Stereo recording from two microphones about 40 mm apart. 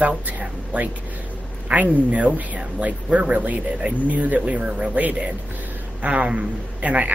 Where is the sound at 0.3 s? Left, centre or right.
Right.